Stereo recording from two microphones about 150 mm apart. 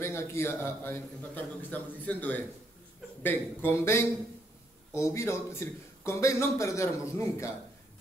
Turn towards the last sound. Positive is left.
turn(degrees=20)  # may be behind; listen again after turning